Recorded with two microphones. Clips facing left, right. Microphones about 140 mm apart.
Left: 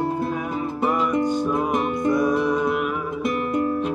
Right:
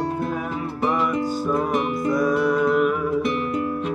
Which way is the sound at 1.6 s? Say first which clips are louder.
Even; 25° left (ahead or behind).